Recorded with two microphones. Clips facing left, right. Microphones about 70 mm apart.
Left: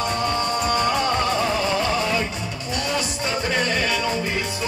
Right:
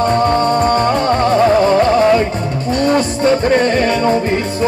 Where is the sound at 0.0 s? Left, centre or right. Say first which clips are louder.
Right 10 dB; right.